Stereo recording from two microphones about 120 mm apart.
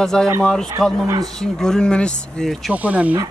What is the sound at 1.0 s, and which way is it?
Speech, 30° right (ahead or behind).